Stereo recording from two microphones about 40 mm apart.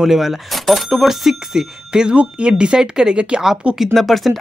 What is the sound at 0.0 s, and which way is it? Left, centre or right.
Speech, centre.